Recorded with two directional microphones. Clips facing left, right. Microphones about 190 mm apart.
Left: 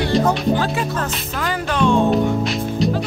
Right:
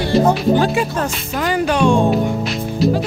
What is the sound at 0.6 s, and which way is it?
Speech, 15° right (ahead or behind).